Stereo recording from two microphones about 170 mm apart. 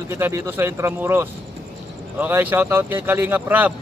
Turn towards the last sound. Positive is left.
turn(degrees=-10)  # may be behind; listen again after turning